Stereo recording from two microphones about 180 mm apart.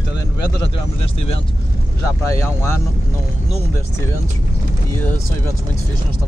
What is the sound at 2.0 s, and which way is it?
Speech, 15° left (ahead or behind).